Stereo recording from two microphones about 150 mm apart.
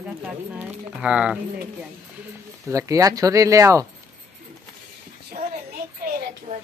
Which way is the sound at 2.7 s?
20° right (ahead or behind).